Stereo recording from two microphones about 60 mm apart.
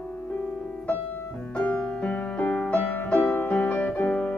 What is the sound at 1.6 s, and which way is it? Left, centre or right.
Music, left.